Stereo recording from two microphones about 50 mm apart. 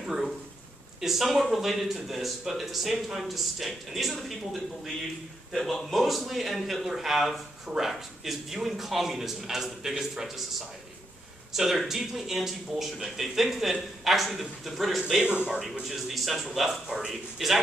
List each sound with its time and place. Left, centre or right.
0.0 s a man's voice: centre
11.5 s a man's voice: centre
15.2 s speech: right
15.9 s a man's voice: centre